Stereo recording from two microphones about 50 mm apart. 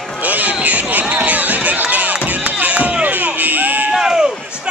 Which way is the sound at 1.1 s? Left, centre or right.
Right.